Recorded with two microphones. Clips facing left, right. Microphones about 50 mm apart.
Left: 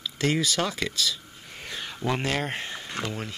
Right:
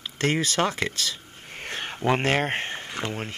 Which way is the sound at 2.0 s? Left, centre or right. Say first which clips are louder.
Right 5 dB; right.